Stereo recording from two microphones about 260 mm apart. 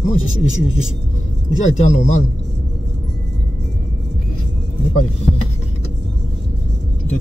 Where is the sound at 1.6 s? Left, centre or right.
Left.